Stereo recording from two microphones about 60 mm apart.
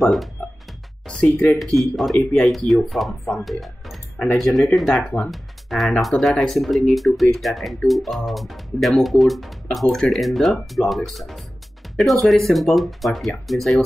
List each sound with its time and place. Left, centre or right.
1.0 s speech: centre
1.8 s speech: centre
3.6 s music: centre
4.2 s speech: centre